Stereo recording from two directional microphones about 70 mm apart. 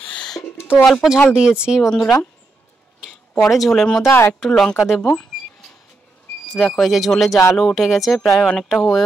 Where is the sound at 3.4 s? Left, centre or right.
Centre.